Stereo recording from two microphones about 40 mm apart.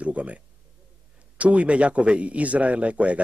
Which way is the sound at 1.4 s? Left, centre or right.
Right.